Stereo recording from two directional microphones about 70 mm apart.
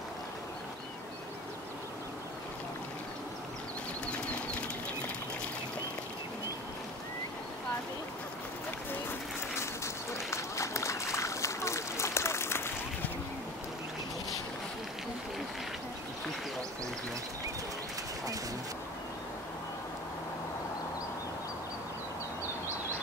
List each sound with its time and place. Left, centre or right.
4.0 s bird flight: centre
10.1 s run: left